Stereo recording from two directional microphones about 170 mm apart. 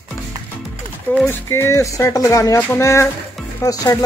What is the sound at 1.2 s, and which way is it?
Speech, 15° left (ahead or behind).